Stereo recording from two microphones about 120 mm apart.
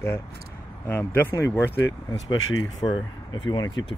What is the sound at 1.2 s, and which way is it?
Speech, 20° left (ahead or behind).